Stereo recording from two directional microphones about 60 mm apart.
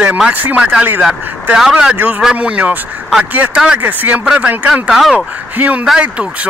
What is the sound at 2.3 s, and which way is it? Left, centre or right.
Speech, right.